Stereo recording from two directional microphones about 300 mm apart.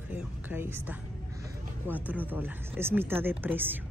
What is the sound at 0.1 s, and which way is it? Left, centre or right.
Music, centre.